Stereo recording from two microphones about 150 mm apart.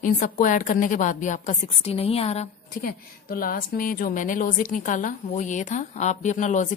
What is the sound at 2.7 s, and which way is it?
A woman's voice, 75° left (ahead or behind).